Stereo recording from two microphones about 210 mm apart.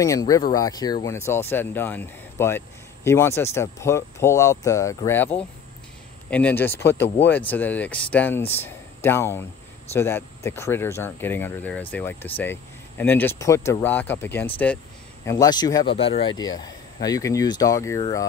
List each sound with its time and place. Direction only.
0.0 s speech: 15° left (ahead or behind)